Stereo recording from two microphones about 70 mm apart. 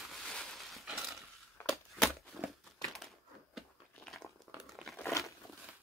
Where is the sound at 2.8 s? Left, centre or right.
Centre.